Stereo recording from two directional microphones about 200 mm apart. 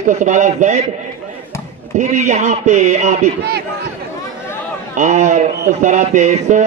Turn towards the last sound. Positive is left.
turn(degrees=-35)  # may be behind; listen again after turning